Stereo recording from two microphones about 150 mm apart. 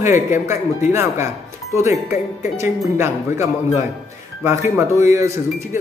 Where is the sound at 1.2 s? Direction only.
20° right (ahead or behind).